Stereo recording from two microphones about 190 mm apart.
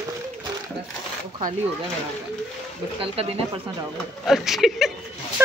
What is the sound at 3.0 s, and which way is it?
Speech, 30° right (ahead or behind).